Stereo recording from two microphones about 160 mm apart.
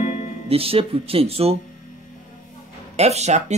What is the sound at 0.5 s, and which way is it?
Speech, 35° right (ahead or behind).